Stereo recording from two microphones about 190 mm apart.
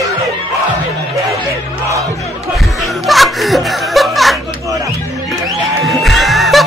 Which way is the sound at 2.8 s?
Centre (ahead or behind).